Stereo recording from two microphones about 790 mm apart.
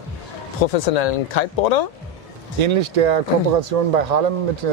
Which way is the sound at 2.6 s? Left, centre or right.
Right.